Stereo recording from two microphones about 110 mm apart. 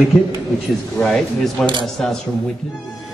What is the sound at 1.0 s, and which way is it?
A woman's voice, 5° left (ahead or behind).